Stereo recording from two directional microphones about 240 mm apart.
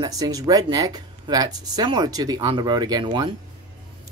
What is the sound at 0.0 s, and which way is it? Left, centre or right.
Speech, centre.